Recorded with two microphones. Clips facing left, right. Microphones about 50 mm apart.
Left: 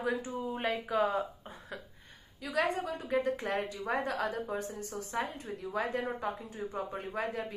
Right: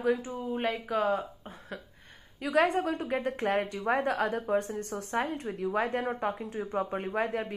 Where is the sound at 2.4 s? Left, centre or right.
Right.